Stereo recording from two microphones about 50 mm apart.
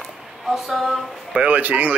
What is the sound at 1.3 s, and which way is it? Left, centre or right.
Speech, right.